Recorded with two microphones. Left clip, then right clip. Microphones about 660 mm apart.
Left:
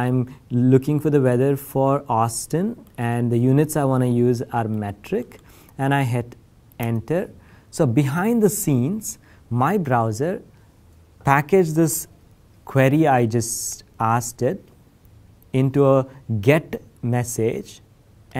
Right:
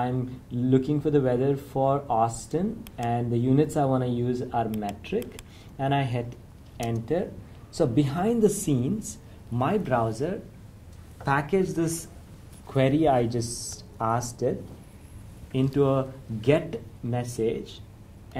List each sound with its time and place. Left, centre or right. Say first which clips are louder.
0.6 s speech: left 6 dB; left
12.6 s speech: left 5 dB; left
15.5 s speech: left 7 dB; left